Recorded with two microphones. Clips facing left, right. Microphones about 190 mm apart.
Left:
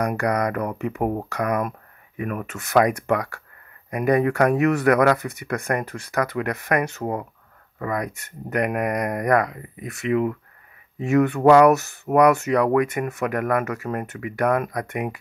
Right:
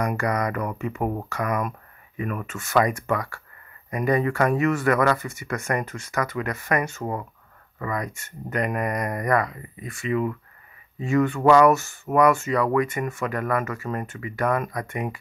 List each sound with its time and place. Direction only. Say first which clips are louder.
0.2 s speech: left 3 dB; 60° left (ahead or behind)
7.0 s speech: left 3 dB; 40° left (ahead or behind)
7.8 s speech: left 3 dB; 65° left (ahead or behind)